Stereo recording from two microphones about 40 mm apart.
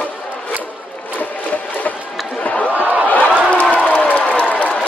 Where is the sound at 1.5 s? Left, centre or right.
Left.